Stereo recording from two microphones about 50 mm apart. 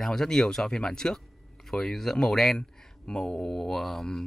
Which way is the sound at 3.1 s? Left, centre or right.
Centre.